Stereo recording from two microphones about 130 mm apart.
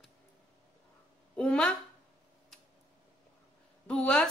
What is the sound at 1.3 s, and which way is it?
Speech, 10° left (ahead or behind).